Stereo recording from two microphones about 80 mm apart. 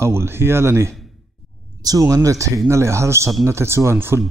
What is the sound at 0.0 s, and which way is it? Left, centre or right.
Speech, right.